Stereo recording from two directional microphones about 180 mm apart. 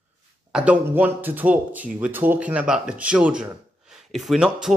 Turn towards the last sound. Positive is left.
turn(degrees=-5)  # may be behind; listen again after turning